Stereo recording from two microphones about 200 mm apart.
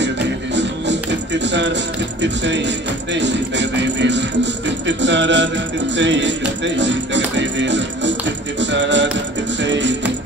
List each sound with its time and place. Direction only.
1.4 s speech: 60° right (ahead or behind)